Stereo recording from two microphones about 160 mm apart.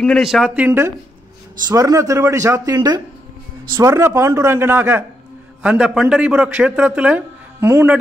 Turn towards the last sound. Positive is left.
turn(degrees=-15)  # may be behind; listen again after turning